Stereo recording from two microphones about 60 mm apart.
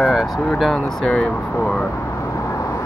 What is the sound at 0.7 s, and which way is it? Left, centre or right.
Speech, centre.